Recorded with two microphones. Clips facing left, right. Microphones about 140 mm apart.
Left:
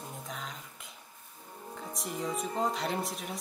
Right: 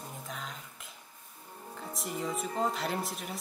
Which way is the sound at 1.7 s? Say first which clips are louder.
Even; centre (ahead or behind).